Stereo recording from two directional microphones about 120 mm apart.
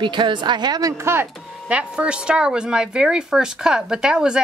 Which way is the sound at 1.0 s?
20° right (ahead or behind).